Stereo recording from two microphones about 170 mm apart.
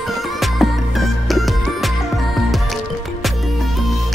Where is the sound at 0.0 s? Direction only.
Centre (ahead or behind).